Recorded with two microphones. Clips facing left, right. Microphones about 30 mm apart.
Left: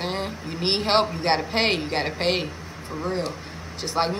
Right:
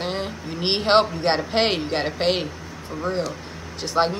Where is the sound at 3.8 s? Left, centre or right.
Centre.